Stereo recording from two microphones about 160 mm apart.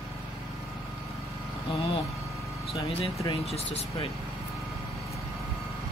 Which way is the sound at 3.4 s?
40° left (ahead or behind).